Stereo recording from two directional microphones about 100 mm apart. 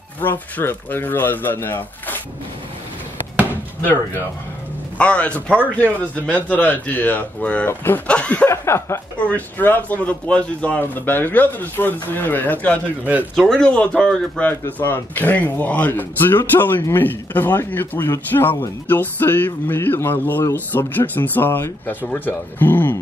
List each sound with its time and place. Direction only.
0.2 s speech: 20° left (ahead or behind)
4.9 s speech: 10° left (ahead or behind)
8.5 s speech: 25° left (ahead or behind)